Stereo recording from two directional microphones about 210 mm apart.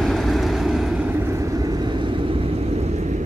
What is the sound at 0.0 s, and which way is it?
Vehicle, centre (ahead or behind).